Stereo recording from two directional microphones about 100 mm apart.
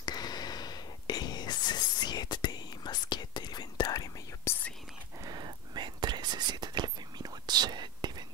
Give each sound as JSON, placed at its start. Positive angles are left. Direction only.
{"t": 0.0, "sound": "whispering", "side_deg": 45}
{"t": 4.5, "sound": "whispering", "side_deg": 25}
{"t": 5.2, "sound": "whispering", "side_deg": -45}